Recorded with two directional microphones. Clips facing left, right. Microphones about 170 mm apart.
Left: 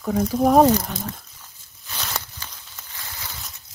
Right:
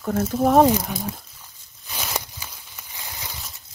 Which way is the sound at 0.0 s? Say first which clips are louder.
Left 1 dB; centre (ahead or behind).